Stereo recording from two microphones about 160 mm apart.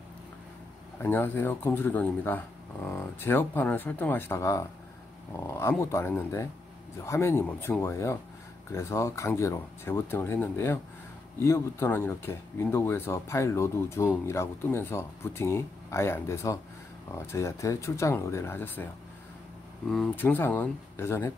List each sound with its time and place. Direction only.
0.9 s speech: 15° left (ahead or behind)
19.9 s speech: 5° left (ahead or behind)